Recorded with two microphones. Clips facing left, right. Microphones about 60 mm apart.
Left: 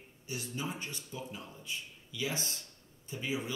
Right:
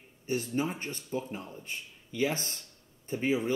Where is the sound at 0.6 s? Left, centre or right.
Right.